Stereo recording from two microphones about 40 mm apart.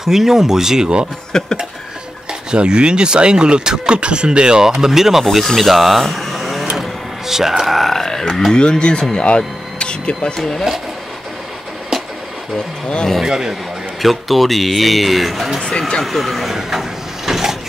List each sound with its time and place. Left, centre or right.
0.0 s speech: centre
1.3 s a sound: centre
2.5 s a man's voice: right; by 5.5 s centre
5.6 s a sound: centre
6.8 s speech: centre
8.5 s speech: left
12.5 s speech: left
13.2 s speech: centre
14.0 s a man's voice: centre
17.3 s a sound: centre